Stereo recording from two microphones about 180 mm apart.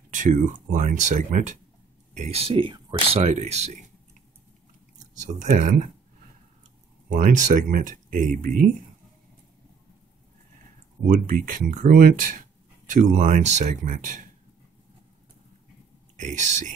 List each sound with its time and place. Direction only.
0.1 s speech: 45° right (ahead or behind); by 3.2 s 25° right (ahead or behind)
3.2 s speech: 40° right (ahead or behind)
5.1 s speech: 45° right (ahead or behind)
7.1 s speech: 50° right (ahead or behind)
11.1 s speech: 50° right (ahead or behind)
16.2 s speech: 40° right (ahead or behind)